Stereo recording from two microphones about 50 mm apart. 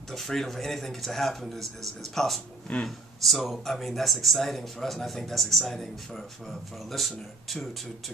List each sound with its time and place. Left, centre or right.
0.1 s speech: centre
2.7 s speech: left
3.2 s speech: centre